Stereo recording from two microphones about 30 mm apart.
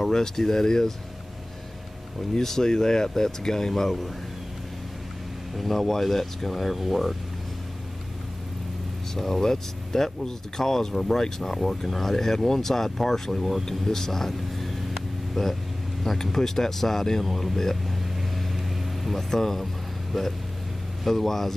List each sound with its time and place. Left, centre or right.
0.1 s speech: centre
2.4 s speech: centre
5.6 s speech: centre
9.1 s speech: centre
17.2 s speech: centre
19.0 s speech: centre